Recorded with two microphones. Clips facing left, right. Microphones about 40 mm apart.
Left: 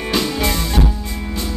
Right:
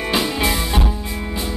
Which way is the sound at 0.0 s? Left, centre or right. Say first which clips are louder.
Even; centre.